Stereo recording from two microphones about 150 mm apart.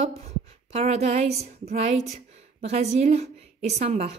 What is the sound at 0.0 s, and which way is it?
Speech, 45° right (ahead or behind).